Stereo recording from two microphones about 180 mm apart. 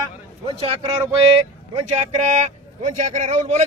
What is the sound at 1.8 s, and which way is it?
A man's voice, 40° right (ahead or behind).